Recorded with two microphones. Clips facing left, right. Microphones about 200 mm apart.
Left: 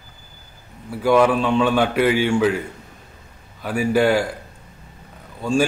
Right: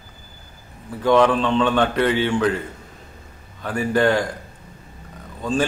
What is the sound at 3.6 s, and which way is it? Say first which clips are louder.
Speech: left 1 dB; 10° left (ahead or behind).